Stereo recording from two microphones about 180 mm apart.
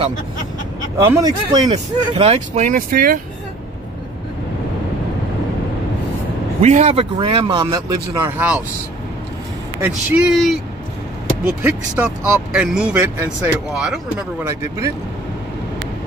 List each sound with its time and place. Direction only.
1.0 s speech: 20° right (ahead or behind)
2.2 s speech: 35° right (ahead or behind); by 3.2 s 55° right (ahead or behind)
6.6 s speech: 40° right (ahead or behind); by 8.4 s 20° right (ahead or behind)
9.8 s speech: 10° right (ahead or behind)